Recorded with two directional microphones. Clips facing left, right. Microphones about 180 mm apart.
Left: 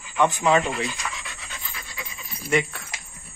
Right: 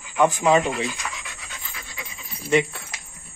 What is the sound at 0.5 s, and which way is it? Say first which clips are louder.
Speech: right 2 dB; 15° right (ahead or behind).